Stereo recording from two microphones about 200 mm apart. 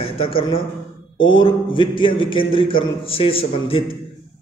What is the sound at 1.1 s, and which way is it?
Speech, 75° left (ahead or behind).